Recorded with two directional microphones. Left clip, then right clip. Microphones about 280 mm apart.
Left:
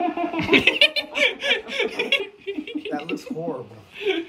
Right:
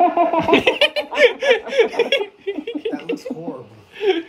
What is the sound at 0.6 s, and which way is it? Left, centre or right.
Laughter, centre.